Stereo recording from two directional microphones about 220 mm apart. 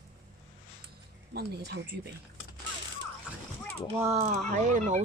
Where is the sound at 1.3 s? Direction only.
45° right (ahead or behind).